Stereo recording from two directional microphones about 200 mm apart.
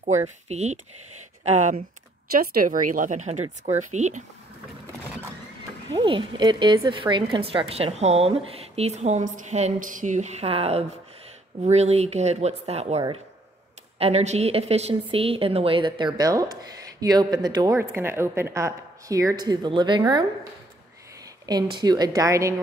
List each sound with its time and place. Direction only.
0.0 s speech: 35° right (ahead or behind)
2.3 s speech: 45° right (ahead or behind)
5.9 s a woman's voice: 25° right (ahead or behind)
21.7 s a woman's voice: 20° right (ahead or behind)